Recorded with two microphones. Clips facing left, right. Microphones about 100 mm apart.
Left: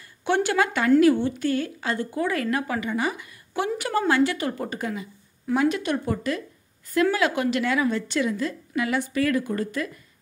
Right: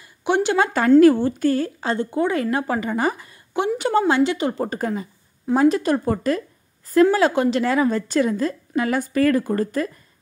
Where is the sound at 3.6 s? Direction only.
25° right (ahead or behind).